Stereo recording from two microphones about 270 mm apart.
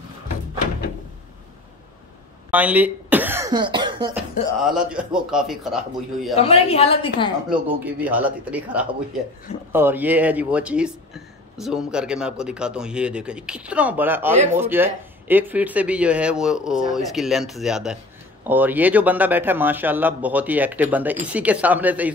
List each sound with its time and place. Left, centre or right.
2.5 s cough: centre
4.1 s speech: centre
6.4 s a woman's voice: left
7.4 s a man's voice: centre